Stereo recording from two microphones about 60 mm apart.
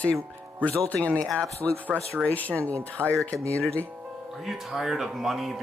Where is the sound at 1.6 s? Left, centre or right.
Right.